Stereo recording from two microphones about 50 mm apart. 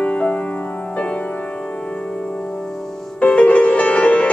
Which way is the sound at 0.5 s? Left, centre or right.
Left.